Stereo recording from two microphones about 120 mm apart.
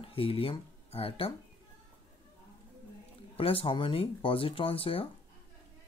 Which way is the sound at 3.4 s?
50° left (ahead or behind).